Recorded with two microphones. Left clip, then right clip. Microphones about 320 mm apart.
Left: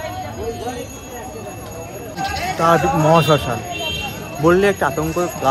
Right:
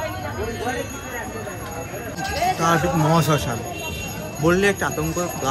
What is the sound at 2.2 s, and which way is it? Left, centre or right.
Speech, right.